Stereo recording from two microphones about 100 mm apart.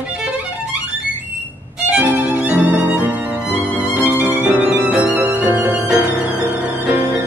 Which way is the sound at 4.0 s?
20° right (ahead or behind).